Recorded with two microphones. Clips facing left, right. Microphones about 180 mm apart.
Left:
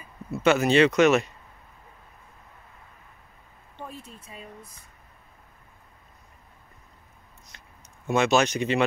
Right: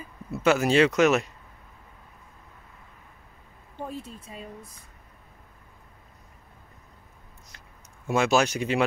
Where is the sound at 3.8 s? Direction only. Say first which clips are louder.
Right 5 dB; 35° right (ahead or behind).